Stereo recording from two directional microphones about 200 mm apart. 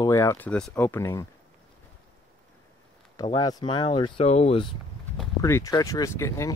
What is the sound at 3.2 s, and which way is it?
Speech, 20° left (ahead or behind).